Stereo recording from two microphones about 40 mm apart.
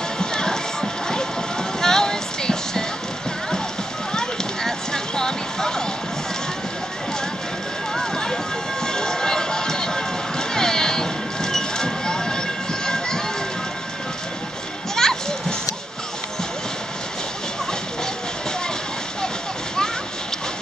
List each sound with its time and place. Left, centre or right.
0.2 s a sound: centre
1.8 s music: centre
4.1 s music: centre
7.9 s run: centre
8.8 s music: centre
15.0 s children playing: centre